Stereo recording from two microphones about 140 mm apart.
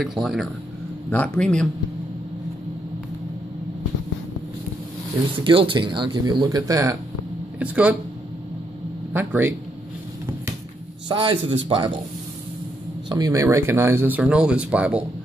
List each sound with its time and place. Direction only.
0.0 s speech: 5° right (ahead or behind)
1.1 s speech: 10° left (ahead or behind)
5.4 s speech: 35° right (ahead or behind)
6.7 s speech: 20° right (ahead or behind)
7.5 s speech: 10° right (ahead or behind)
9.1 s speech: 15° right (ahead or behind)
11.1 s speech: 35° right (ahead or behind)
13.1 s speech: 25° right (ahead or behind); by 15.0 s 10° right (ahead or behind)